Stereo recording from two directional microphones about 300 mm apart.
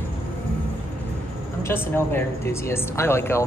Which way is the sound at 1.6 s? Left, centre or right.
Centre.